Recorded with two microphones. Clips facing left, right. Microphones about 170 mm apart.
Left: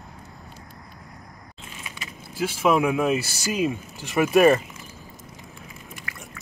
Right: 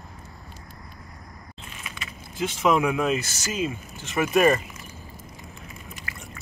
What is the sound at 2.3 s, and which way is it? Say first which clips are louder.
Speech: left 1 dB; 10° left (ahead or behind).